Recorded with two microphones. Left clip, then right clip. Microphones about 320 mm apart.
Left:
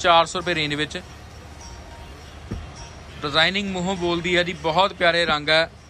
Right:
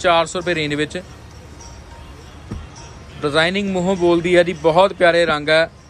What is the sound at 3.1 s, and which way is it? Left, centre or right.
A man's voice, centre.